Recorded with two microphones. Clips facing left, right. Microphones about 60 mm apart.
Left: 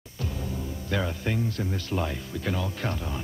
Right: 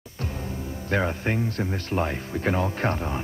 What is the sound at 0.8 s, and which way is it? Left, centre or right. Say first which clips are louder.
Speech: right 5 dB; right.